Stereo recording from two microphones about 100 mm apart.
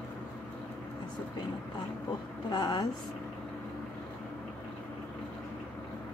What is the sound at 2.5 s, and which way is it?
Speech, 45° left (ahead or behind).